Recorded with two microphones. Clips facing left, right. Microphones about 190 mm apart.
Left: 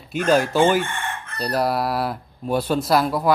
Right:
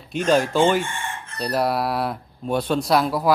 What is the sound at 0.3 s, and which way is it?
Speech, 5° left (ahead or behind).